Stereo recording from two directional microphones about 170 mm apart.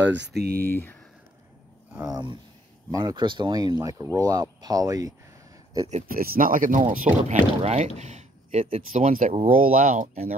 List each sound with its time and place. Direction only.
0.1 s speech: 80° right; by 0.7 s 65° right (ahead or behind)
0.7 s speech: 10° left (ahead or behind)
1.9 s speech: 15° right (ahead or behind)
5.9 s speech: 45° right (ahead or behind)
6.2 s speech: 55° right (ahead or behind)
7.2 s speech: 40° right (ahead or behind)
9.0 s speech: 45° right (ahead or behind)